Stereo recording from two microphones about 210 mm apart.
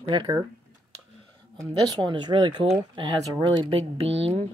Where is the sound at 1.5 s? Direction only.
15° right (ahead or behind).